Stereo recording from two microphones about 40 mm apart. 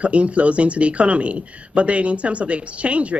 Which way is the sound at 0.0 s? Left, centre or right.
Right.